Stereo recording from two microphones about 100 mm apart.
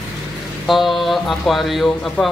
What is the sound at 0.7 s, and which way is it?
Speech, centre (ahead or behind).